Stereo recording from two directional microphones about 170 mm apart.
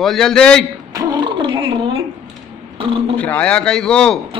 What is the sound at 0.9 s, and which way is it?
Speech, 25° right (ahead or behind).